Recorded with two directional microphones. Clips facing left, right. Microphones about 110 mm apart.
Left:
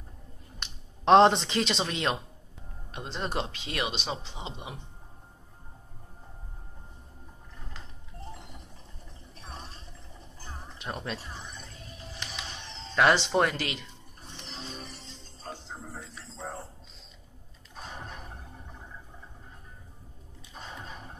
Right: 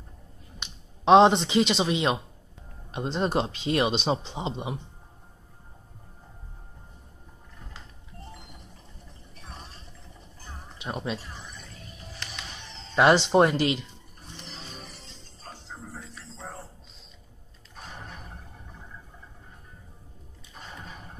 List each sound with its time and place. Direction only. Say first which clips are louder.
0.6 s speech: right 1 dB; 5° right (ahead or behind); by 4.7 s 25° right (ahead or behind)
10.8 s speech: right 4 dB; 5° right (ahead or behind)
12.9 s speech: right 4 dB; 20° right (ahead or behind)
14.3 s music: left 1 dB; centre (ahead or behind)
17.9 s a sound: left 1 dB; centre (ahead or behind)
20.5 s a sound: left 1 dB; centre (ahead or behind)